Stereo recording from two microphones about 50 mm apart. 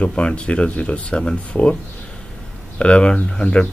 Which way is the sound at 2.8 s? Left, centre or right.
Left.